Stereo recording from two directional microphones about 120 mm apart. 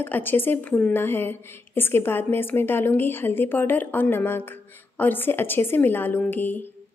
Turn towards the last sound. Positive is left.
turn(degrees=15)  # may be behind; listen again after turning